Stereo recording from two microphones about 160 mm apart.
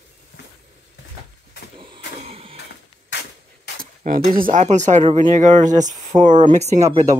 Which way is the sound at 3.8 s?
60° right (ahead or behind).